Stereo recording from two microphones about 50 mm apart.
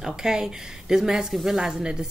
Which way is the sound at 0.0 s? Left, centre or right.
Centre.